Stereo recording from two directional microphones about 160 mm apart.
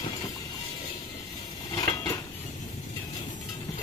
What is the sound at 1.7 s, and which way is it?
Cutlery, 20° left (ahead or behind).